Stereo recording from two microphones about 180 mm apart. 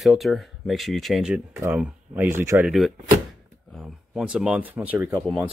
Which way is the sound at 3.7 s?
5° right (ahead or behind).